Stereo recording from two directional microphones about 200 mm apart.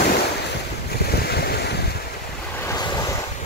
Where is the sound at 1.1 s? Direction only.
50° left (ahead or behind).